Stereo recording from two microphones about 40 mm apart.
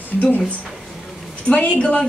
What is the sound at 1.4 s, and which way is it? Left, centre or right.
Speech, left.